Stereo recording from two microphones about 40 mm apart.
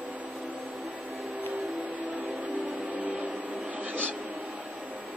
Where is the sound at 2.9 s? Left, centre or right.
Right.